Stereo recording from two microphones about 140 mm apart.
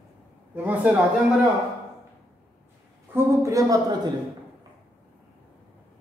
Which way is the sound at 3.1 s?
20° right (ahead or behind).